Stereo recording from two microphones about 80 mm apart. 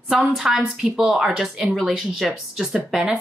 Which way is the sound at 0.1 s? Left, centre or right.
Centre.